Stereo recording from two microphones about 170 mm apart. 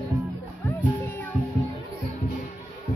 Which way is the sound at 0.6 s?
10° left (ahead or behind).